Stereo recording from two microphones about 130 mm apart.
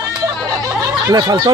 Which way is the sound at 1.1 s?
30° right (ahead or behind).